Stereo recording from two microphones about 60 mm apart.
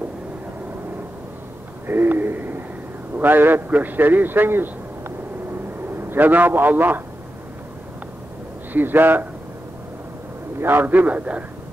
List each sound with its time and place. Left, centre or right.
1.9 s a sound: right
3.2 s a man's voice: right
8.7 s a man's voice: right
10.6 s a man's voice: right